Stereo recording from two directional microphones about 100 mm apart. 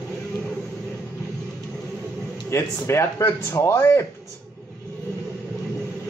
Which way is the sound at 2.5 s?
25° left (ahead or behind).